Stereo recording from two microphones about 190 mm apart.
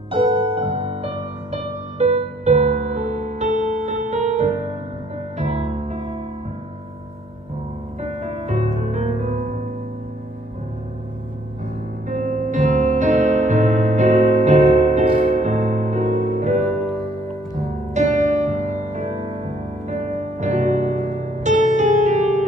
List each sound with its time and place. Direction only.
0.1 s music: 25° right (ahead or behind)
8.0 s music: 40° right (ahead or behind)
12.1 s music: 40° right (ahead or behind)
17.9 s music: 40° right (ahead or behind)